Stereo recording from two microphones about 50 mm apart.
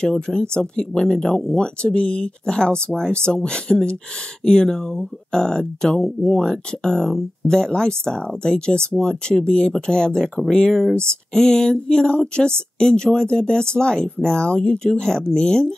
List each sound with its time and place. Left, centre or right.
0.0 s speech: centre